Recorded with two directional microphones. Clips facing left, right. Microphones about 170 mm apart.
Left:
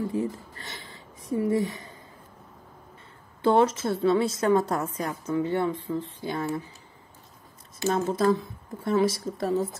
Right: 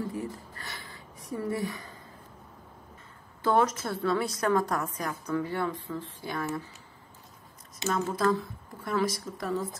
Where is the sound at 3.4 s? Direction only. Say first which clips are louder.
Left 4 dB; 25° left (ahead or behind).